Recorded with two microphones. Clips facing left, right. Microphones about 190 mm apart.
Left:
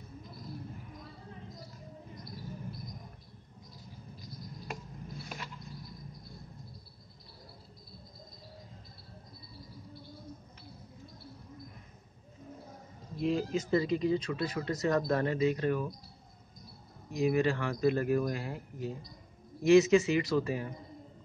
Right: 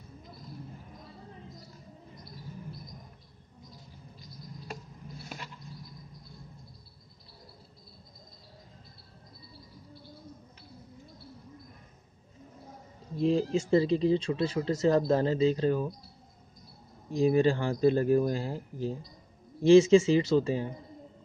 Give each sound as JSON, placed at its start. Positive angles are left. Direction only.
{"t": 13.2, "sound": "speech", "side_deg": -30}
{"t": 17.1, "sound": "speech", "side_deg": -30}